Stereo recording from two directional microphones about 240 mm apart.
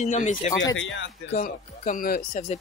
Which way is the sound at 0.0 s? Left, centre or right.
Left.